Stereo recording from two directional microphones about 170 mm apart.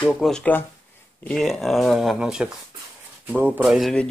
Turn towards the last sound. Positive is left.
turn(degrees=0)  # may be behind; listen again after turning